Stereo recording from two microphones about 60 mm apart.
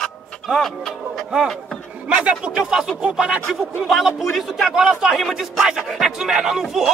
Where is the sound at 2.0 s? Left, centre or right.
Centre.